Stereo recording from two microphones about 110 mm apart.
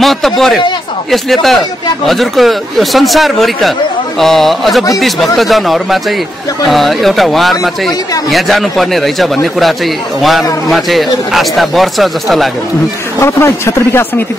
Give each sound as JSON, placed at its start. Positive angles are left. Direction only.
{"t": 0.0, "sound": "speech", "side_deg": 0}
{"t": 13.2, "sound": "speech", "side_deg": 25}